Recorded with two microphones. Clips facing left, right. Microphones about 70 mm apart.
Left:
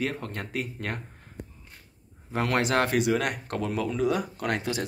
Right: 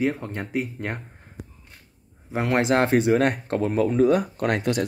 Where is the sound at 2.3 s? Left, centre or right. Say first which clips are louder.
Right 4 dB; right.